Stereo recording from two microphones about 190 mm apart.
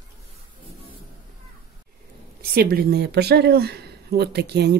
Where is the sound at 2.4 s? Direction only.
55° right (ahead or behind).